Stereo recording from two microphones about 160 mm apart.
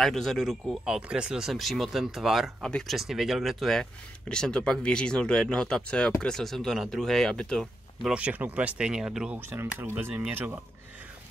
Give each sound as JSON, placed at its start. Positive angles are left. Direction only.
{"t": 0.0, "sound": "speech", "side_deg": 0}
{"t": 9.5, "sound": "speech", "side_deg": -15}